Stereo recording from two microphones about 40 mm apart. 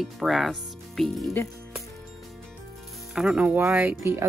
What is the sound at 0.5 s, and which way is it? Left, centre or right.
Speech, centre.